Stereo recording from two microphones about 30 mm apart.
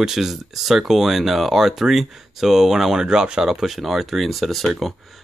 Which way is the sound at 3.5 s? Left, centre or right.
Centre.